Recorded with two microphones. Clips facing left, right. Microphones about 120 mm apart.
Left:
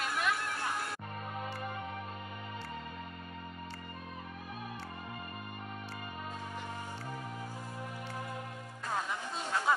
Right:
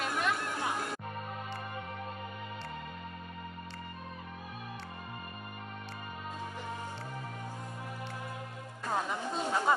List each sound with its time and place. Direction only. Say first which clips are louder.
0.0 s music: right 1 dB; centre (ahead or behind)
0.5 s music: right 2 dB; 15° right (ahead or behind)
8.8 s music: right 3 dB; 15° right (ahead or behind)
9.4 s speech: right 4 dB; 15° right (ahead or behind)